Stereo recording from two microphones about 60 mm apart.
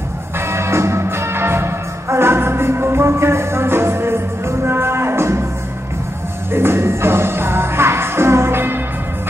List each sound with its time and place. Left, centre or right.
0.5 s music: right
6.5 s music: right